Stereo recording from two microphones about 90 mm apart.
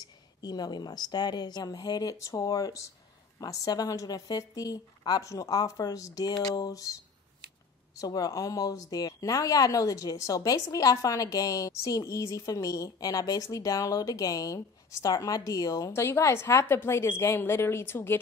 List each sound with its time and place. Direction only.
0.0 s a woman's voice: 50° left (ahead or behind)
8.0 s speech: 40° left (ahead or behind)
15.9 s a woman's voice: 30° left (ahead or behind)